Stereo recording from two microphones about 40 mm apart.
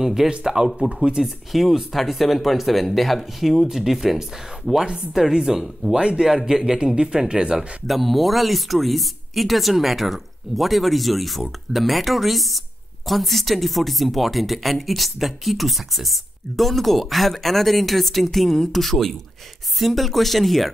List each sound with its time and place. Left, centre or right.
0.0 s speech: centre
7.8 s speech: centre